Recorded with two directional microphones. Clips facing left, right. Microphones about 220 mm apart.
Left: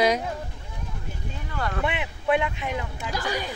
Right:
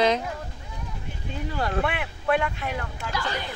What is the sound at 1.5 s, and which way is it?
Speech, 30° right (ahead or behind).